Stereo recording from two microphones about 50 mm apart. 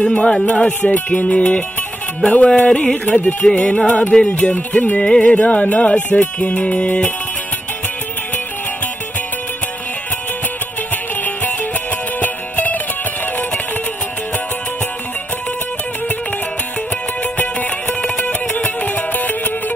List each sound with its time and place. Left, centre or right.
0.1 s music: centre
12.2 s music: left
18.1 s music: left